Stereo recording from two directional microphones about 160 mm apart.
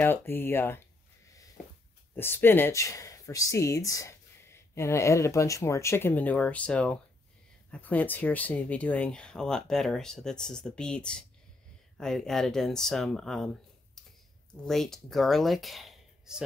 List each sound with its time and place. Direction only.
0.0 s speech: 15° left (ahead or behind)
2.1 s speech: 15° left (ahead or behind)
14.0 s a sound: centre (ahead or behind)
14.5 s speech: 5° left (ahead or behind)